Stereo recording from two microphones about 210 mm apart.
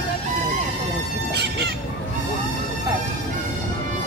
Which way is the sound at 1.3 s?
55° right (ahead or behind).